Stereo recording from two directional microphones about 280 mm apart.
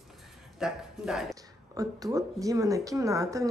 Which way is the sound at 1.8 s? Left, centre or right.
Centre.